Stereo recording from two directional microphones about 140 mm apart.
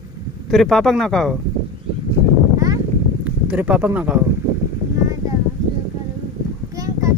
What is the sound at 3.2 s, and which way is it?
Speech, 10° right (ahead or behind).